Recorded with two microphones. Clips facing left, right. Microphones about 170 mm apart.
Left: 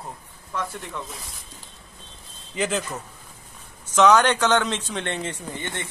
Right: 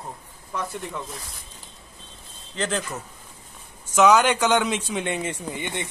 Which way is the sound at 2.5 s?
5° left (ahead or behind).